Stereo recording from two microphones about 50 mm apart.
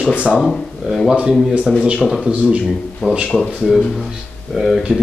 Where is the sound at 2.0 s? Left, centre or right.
Centre.